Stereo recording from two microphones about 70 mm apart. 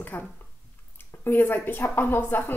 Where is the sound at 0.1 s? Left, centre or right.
Left.